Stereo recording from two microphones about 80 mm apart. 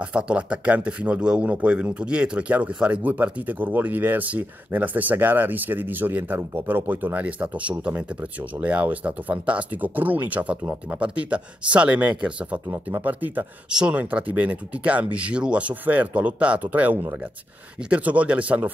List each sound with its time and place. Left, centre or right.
0.0 s speech: centre
13.7 s speech: centre